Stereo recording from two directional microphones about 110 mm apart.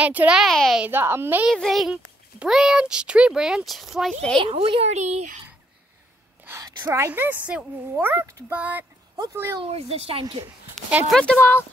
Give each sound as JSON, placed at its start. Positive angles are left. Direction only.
{"t": 0.0, "sound": "speech", "side_deg": -15}
{"t": 0.4, "sound": "a child's voice", "side_deg": 0}
{"t": 0.7, "sound": "a woman's voice", "side_deg": -20}
{"t": 1.5, "sound": "a child's voice", "side_deg": 0}
{"t": 4.5, "sound": "speech", "side_deg": -60}
{"t": 6.6, "sound": "a woman's voice", "side_deg": -25}
{"t": 8.5, "sound": "speech", "side_deg": -15}
{"t": 9.3, "sound": "a woman's voice", "side_deg": -25}
{"t": 9.6, "sound": "speech", "side_deg": -70}
{"t": 10.4, "sound": "a woman's voice", "side_deg": -15}
{"t": 11.1, "sound": "a woman's voice", "side_deg": 10}